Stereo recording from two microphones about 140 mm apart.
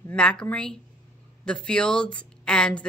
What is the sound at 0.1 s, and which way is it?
A woman's voice, 5° left (ahead or behind).